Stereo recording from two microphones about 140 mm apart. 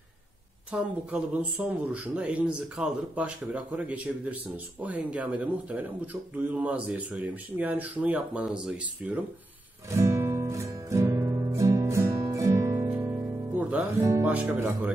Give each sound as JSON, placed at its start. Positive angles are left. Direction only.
{"t": 0.7, "sound": "a man's voice", "side_deg": -10}
{"t": 9.8, "sound": "music", "side_deg": -20}
{"t": 14.2, "sound": "a man's voice", "side_deg": -10}